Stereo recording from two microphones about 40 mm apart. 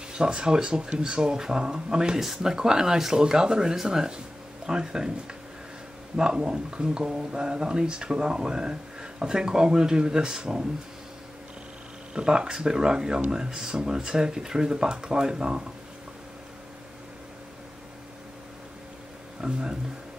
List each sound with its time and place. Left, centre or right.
0.1 s speech: right
2.1 s speech: centre
6.1 s speech: centre
12.1 s speech: right
19.4 s speech: right